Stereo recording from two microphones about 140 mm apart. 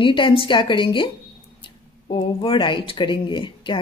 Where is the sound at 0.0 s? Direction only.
35° left (ahead or behind).